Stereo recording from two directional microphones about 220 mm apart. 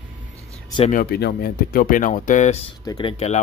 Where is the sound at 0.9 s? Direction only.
45° left (ahead or behind).